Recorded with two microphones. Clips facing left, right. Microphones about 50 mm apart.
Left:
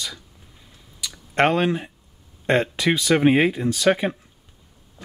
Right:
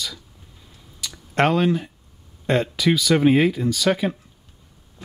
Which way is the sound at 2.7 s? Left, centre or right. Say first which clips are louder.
Right 2 dB; left.